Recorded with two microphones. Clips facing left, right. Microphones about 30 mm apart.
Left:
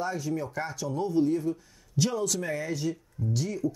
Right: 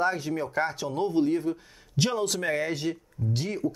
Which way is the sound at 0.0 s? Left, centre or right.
Right.